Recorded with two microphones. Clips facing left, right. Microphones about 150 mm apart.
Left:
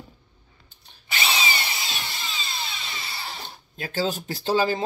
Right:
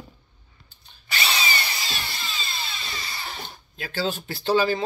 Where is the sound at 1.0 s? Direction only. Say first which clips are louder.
Left 1 dB; 20° left (ahead or behind).